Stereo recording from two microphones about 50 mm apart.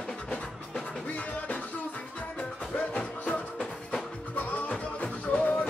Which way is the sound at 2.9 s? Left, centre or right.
Left.